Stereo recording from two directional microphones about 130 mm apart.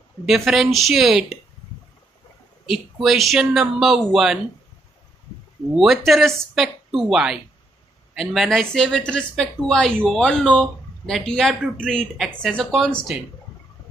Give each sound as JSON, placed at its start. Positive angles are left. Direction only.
{"t": 0.3, "sound": "speech", "side_deg": 0}
{"t": 2.6, "sound": "speech", "side_deg": 0}
{"t": 5.8, "sound": "speech", "side_deg": 0}